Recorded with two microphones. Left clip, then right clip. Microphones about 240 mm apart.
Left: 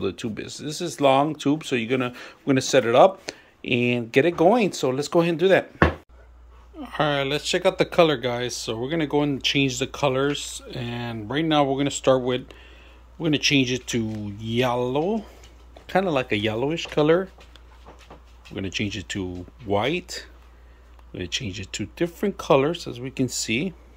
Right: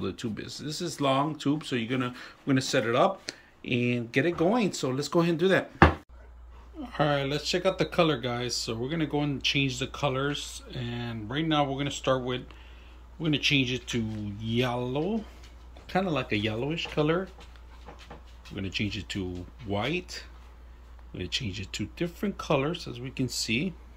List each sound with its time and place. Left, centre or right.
0.0 s speech: centre
6.8 s speech: centre
18.5 s speech: centre